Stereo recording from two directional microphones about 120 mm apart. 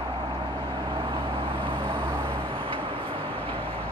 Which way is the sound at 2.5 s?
45° right (ahead or behind).